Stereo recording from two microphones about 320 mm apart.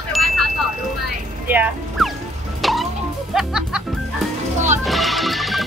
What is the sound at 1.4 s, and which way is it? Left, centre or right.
Speech, centre.